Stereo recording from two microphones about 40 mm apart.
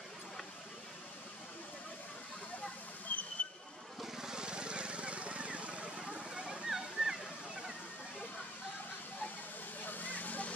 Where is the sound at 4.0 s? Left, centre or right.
Centre; by 5.8 s right.